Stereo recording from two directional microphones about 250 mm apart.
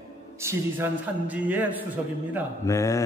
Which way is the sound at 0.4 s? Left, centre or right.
Centre.